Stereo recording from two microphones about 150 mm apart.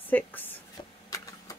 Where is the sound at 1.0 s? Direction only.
25° left (ahead or behind).